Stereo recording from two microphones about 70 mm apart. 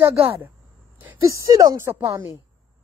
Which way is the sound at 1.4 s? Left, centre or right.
Right.